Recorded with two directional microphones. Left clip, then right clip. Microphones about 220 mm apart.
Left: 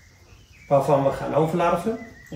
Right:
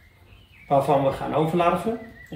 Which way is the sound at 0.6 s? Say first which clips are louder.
Left 1 dB; 5° left (ahead or behind).